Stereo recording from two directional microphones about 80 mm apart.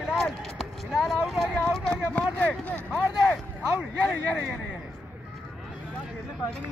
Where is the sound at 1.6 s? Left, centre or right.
Centre.